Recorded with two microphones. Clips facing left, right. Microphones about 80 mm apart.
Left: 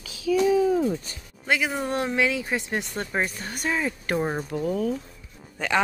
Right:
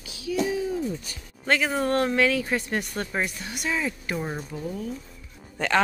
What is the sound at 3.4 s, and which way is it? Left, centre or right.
Speech, left.